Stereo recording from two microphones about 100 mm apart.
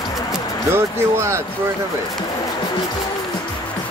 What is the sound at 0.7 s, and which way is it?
Speech, 25° right (ahead or behind).